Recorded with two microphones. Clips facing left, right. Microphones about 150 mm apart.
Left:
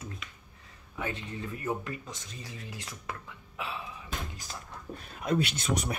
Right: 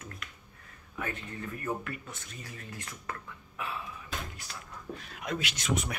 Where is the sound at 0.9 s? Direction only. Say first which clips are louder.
Left 2 dB; 20° left (ahead or behind).